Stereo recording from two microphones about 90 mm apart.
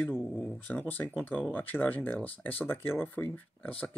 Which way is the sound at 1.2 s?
20° left (ahead or behind).